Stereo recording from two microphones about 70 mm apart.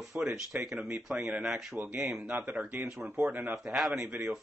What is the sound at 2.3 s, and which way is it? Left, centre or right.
Speech, right.